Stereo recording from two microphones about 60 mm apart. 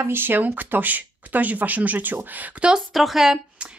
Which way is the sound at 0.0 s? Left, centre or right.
Right.